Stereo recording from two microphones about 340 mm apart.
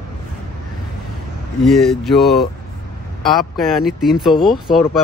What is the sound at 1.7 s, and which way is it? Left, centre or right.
Speech, centre.